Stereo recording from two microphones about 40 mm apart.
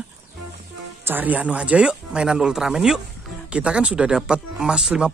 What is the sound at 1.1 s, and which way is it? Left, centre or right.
Speech, right.